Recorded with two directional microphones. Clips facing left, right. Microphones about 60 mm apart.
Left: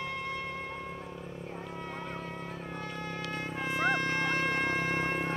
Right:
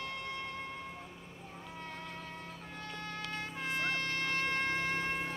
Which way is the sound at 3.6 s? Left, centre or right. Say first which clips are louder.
Left 6 dB; centre.